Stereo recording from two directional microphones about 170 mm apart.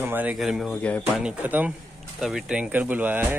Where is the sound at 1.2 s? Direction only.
10° right (ahead or behind).